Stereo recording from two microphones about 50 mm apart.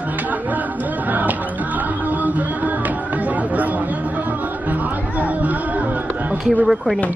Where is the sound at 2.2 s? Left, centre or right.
Right.